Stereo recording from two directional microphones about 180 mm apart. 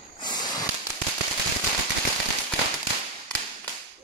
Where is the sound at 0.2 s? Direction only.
25° left (ahead or behind).